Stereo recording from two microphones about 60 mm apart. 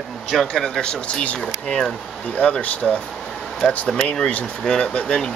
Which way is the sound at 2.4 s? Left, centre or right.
Left.